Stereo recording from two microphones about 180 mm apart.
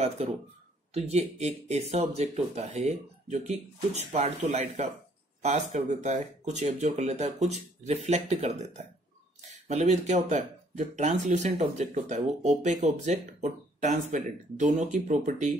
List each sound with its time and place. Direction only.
0.0 s speech: 35° right (ahead or behind)